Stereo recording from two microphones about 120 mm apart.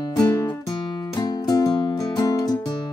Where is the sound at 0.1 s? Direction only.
30° left (ahead or behind).